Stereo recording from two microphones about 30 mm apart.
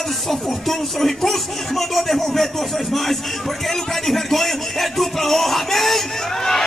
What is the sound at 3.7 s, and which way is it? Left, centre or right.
Music, centre.